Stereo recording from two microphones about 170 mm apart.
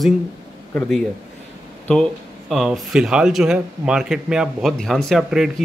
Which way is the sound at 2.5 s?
Centre (ahead or behind).